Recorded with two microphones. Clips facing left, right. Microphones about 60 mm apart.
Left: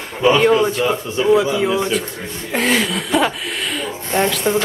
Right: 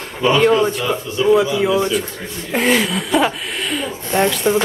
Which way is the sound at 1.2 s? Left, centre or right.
Left.